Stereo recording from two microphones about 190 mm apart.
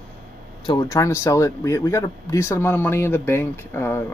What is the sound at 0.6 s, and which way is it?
Speech, 20° left (ahead or behind).